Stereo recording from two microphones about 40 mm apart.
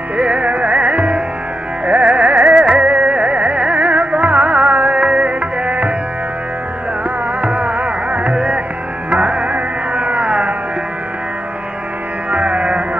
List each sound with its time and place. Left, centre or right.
0.2 s music: right
7.4 s music: right
12.3 s music: right